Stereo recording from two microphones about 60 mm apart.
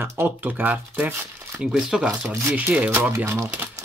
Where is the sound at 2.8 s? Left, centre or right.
Right.